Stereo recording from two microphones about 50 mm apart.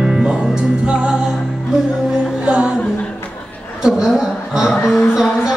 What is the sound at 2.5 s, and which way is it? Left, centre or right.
Music, right.